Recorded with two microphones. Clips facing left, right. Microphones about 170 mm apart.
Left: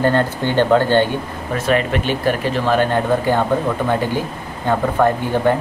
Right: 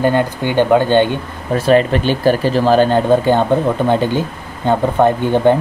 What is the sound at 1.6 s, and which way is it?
Speech, 35° right (ahead or behind).